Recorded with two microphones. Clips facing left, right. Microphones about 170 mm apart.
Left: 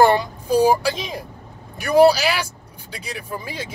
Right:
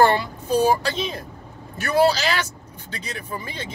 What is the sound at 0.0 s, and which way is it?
Speech, 10° left (ahead or behind).